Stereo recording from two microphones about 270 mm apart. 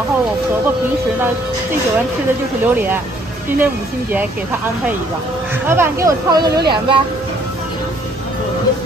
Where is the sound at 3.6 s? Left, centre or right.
Centre.